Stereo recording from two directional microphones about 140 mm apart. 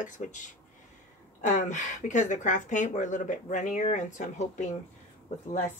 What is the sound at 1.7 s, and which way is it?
Speech, 60° left (ahead or behind).